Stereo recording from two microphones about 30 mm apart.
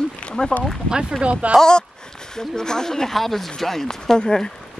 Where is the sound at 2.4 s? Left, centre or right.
Left.